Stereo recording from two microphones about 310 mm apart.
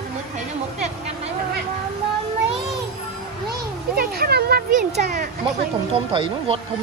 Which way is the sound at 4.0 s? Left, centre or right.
Right.